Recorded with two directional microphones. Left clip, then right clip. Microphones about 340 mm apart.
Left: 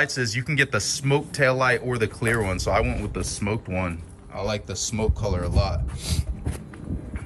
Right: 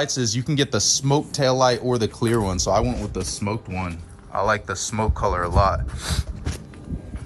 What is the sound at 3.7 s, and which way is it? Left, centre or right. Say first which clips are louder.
Speech: left 2 dB; centre.